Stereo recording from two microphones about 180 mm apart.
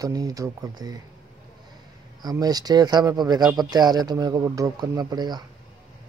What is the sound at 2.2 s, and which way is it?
Speech, 20° right (ahead or behind).